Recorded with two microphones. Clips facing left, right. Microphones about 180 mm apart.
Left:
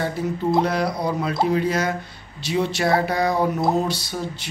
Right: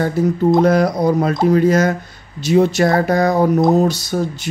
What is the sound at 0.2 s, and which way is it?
Speech, 45° right (ahead or behind).